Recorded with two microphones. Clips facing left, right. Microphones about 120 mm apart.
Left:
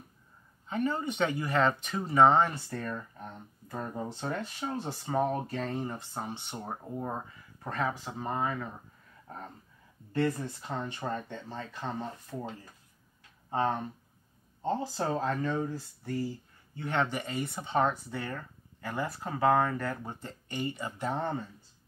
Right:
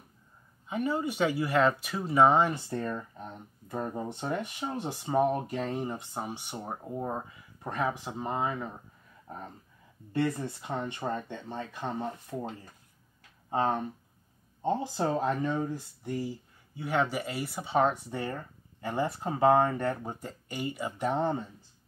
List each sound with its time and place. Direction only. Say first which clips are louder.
0.7 s speech: right 1 dB; 10° right (ahead or behind)
10.1 s speech: even; 20° right (ahead or behind)
13.5 s speech: right 1 dB; 20° right (ahead or behind)
18.1 s speech: right 3 dB; 25° right (ahead or behind)
20.1 s speech: right 2 dB; 10° right (ahead or behind)